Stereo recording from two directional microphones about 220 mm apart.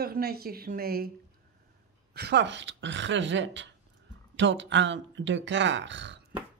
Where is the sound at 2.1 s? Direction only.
50° right (ahead or behind).